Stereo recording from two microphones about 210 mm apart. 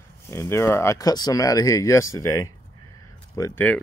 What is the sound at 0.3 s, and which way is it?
Speech, 10° left (ahead or behind).